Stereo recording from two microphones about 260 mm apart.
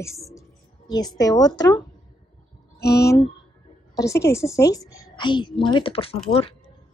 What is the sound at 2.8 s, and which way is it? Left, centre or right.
Speech, left.